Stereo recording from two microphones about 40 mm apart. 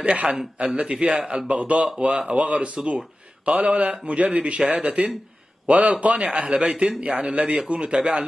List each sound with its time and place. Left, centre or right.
0.0 s a man's voice: right
3.5 s a man's voice: right
4.0 s a man's voice: right